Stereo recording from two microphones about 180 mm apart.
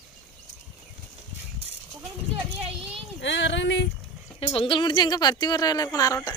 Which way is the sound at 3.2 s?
90° left.